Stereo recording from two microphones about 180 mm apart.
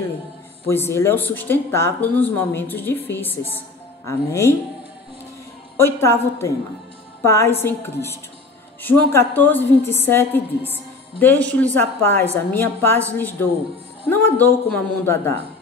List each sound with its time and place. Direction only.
0.7 s a woman's voice: 15° left (ahead or behind)
5.8 s speech: 15° left (ahead or behind)
10.7 s music: 10° left (ahead or behind)
11.4 s speech: 10° left (ahead or behind)
14.0 s speech: 10° left (ahead or behind)